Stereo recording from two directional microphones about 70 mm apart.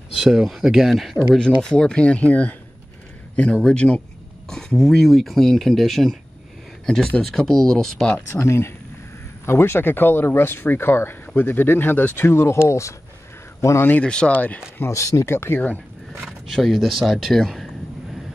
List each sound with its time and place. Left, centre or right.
0.1 s speech: centre
3.6 s speech: centre
8.3 s a man's voice: left
13.8 s speech: centre
14.8 s speech: left
15.3 s speech: left
16.3 s speech: centre